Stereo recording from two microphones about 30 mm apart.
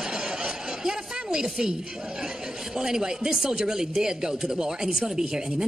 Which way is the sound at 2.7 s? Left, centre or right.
Right.